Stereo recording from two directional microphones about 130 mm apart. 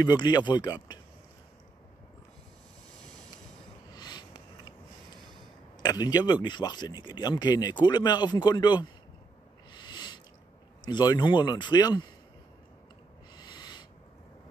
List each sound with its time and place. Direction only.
0.0 s speech: 35° left (ahead or behind)
3.9 s a sound: 30° left (ahead or behind)
5.8 s speech: 30° left (ahead or behind)
9.7 s a sound: 35° left (ahead or behind)
10.9 s speech: 35° left (ahead or behind)
13.4 s owl: 35° left (ahead or behind)